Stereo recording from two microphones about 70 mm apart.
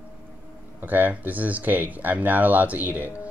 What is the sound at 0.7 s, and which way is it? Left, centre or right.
Speech, right.